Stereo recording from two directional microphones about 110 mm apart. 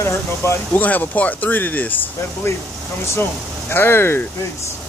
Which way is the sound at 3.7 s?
20° left (ahead or behind).